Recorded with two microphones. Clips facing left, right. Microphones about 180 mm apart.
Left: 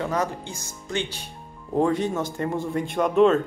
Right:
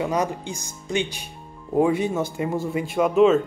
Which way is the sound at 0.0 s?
15° right (ahead or behind).